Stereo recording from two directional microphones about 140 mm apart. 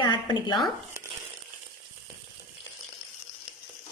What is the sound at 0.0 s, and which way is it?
Speech, 30° left (ahead or behind).